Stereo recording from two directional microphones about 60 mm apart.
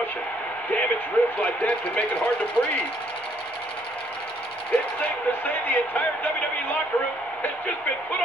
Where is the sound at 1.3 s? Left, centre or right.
Left.